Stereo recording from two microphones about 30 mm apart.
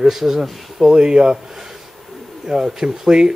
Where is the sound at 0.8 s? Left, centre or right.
Right.